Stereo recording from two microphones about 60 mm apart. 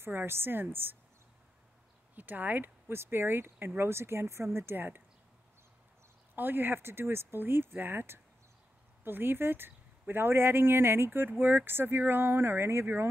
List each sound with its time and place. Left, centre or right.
0.0 s speech: right
2.1 s speech: right
6.3 s speech: right